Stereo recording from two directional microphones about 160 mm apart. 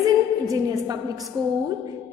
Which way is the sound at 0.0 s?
20° right (ahead or behind).